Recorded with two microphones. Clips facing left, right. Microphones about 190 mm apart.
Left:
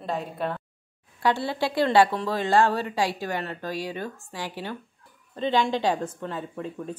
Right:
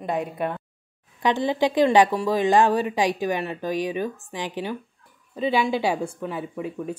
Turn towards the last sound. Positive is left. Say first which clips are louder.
# right 3 dB
turn(degrees=-10)  # may be behind; listen again after turning